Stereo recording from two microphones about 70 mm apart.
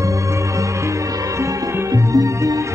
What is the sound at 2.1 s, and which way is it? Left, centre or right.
Music, right.